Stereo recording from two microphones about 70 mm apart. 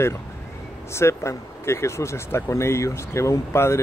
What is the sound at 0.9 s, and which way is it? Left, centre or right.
A man's voice, left.